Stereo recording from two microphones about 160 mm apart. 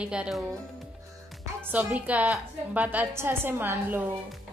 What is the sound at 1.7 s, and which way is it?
A woman's voice, 10° right (ahead or behind).